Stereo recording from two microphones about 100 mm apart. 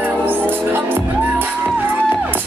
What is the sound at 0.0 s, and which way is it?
Music, 20° right (ahead or behind).